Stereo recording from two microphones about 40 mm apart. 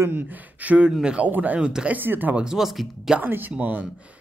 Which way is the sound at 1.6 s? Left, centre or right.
Right.